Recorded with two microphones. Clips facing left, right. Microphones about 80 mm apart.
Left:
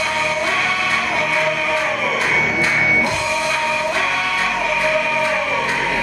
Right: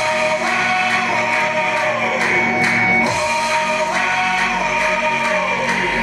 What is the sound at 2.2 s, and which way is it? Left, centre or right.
Music, centre.